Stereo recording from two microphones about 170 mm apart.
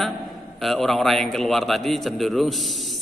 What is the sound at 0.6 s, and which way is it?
A man's voice, centre (ahead or behind).